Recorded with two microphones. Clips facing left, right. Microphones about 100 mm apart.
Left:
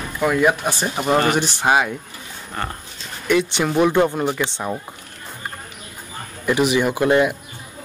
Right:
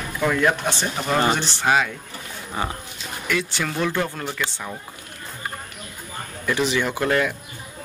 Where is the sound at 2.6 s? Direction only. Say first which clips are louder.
Right 1 dB; 10° right (ahead or behind).